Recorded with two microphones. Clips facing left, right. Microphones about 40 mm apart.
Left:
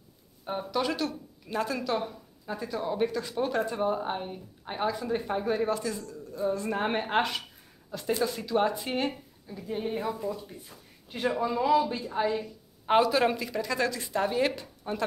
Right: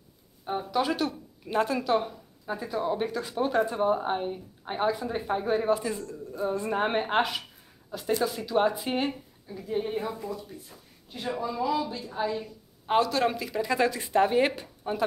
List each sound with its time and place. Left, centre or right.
0.5 s speech: centre
1.0 s speech: right
1.8 s a woman's voice: centre
11.1 s speech: left
12.8 s speech: centre
13.6 s speech: centre